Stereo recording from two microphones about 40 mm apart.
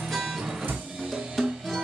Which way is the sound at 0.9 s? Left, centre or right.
Centre.